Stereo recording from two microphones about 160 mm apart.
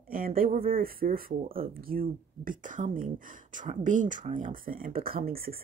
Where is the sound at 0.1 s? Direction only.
65° right (ahead or behind).